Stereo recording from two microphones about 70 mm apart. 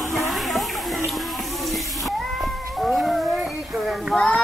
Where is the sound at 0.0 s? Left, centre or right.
Centre.